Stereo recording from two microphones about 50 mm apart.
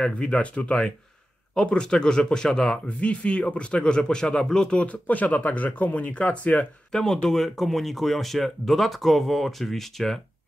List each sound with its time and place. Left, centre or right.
0.0 s speech: left
3.0 s speech: left
5.0 s speech: left
6.9 s speech: centre